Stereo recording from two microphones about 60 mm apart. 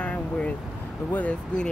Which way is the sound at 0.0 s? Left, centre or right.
Left.